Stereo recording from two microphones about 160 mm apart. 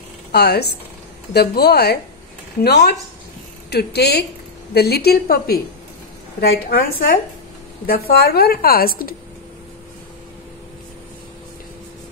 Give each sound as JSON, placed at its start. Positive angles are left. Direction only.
{"t": 0.3, "sound": "a woman's voice", "side_deg": 90}